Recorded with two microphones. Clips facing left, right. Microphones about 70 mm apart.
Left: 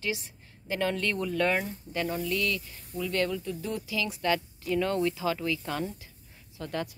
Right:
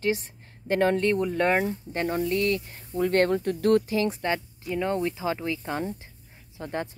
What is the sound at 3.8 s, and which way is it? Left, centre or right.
Speech, right.